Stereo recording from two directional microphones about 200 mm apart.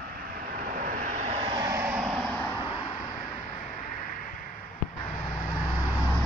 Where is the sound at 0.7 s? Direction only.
45° right (ahead or behind); by 2.8 s 20° left (ahead or behind).